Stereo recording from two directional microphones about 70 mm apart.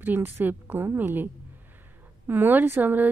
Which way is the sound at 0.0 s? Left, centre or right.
Right.